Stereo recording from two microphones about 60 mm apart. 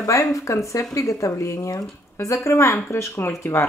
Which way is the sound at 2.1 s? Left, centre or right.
Left.